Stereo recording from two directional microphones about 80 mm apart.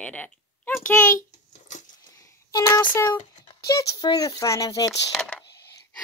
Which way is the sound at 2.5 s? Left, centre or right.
Left.